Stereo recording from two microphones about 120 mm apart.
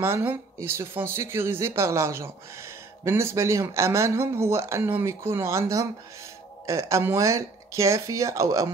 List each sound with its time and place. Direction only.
0.0 s speech: 20° right (ahead or behind)